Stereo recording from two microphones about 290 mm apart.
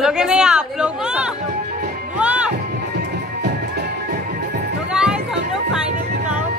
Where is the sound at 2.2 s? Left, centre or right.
Centre.